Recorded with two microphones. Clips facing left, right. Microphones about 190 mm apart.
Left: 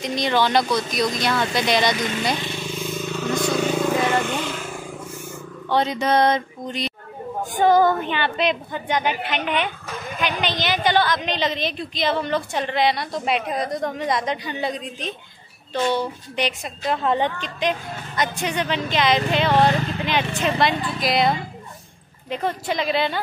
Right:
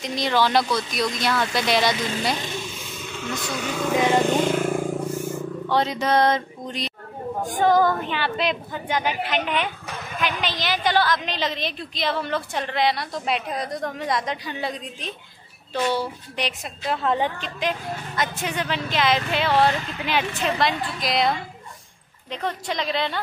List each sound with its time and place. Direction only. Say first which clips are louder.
0.0 s a woman's voice: left 1 dB; centre (ahead or behind)
3.9 s vehicle: right 6 dB; 15° right (ahead or behind)
4.2 s vehicle: right 6 dB; 40° right (ahead or behind)
5.7 s a woman's voice: left 2 dB; centre (ahead or behind)